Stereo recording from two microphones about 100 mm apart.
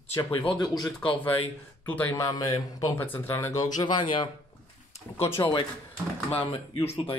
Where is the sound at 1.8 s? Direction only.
15° left (ahead or behind).